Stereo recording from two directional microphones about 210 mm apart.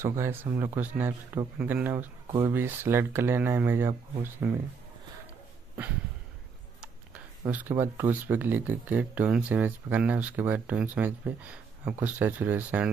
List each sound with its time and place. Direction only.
0.0 s speech: 10° right (ahead or behind)
7.4 s speech: 10° right (ahead or behind)